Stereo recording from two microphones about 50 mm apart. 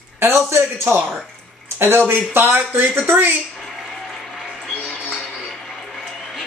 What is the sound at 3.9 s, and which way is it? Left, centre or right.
Applause, centre.